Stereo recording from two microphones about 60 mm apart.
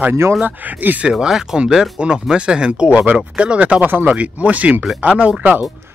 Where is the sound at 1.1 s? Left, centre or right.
Centre; by 5.7 s right.